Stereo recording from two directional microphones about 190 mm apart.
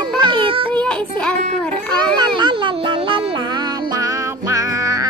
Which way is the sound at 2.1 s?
25° right (ahead or behind).